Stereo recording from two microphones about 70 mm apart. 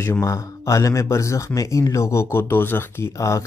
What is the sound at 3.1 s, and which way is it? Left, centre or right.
Speech, left.